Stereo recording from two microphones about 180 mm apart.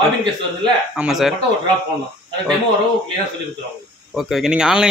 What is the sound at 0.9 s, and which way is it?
Speech, 5° right (ahead or behind).